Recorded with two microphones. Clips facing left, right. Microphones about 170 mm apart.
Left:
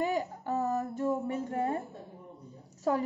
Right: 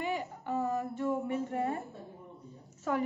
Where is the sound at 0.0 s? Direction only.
40° left (ahead or behind).